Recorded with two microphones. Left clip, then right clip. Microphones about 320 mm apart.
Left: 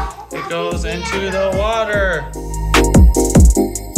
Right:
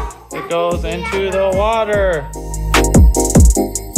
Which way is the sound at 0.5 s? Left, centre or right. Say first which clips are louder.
Right 5 dB; centre.